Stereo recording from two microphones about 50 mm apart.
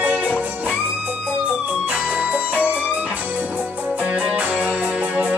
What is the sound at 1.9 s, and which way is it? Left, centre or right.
Music, right.